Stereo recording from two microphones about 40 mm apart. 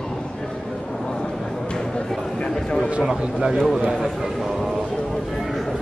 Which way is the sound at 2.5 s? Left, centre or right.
Centre.